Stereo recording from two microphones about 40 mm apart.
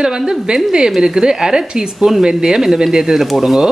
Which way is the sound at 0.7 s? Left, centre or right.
Centre.